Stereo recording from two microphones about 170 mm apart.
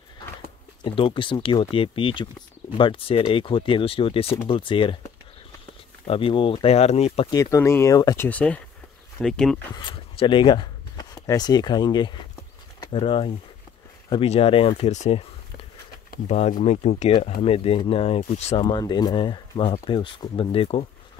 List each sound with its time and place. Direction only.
0.9 s speech: 30° left (ahead or behind)
6.0 s speech: 30° left (ahead or behind)
7.2 s speech: 20° left (ahead or behind)
8.3 s speech: 10° left (ahead or behind)
9.8 s speech: 30° left (ahead or behind)
16.3 s speech: 45° left (ahead or behind)
18.7 s speech: 25° left (ahead or behind)